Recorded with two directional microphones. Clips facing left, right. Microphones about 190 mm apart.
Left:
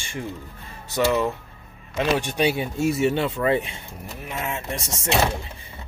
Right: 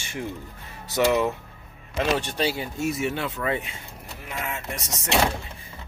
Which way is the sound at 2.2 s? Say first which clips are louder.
Left 4 dB; 15° left (ahead or behind).